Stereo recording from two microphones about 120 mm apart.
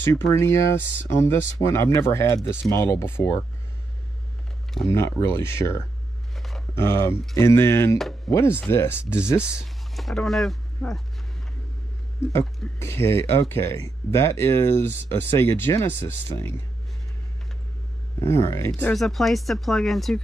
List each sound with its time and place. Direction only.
0.0 s speech: 25° left (ahead or behind)
4.8 s speech: 20° left (ahead or behind)
6.3 s a sound: centre (ahead or behind)
6.7 s speech: 20° left (ahead or behind)
9.6 s speech: centre (ahead or behind)
12.7 s speech: 20° left (ahead or behind)
18.3 s speech: 20° left (ahead or behind)
18.9 s speech: centre (ahead or behind)